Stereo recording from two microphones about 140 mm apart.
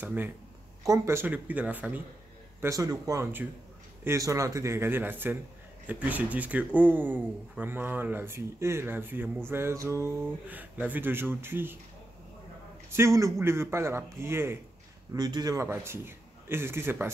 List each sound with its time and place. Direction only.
0.0 s a man's voice: 15° right (ahead or behind)
2.6 s a man's voice: 25° right (ahead or behind)
12.9 s a man's voice: 20° right (ahead or behind)
15.1 s a man's voice: 30° right (ahead or behind)